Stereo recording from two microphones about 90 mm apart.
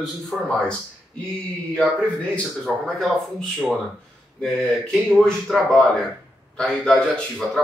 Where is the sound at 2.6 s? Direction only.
Centre (ahead or behind).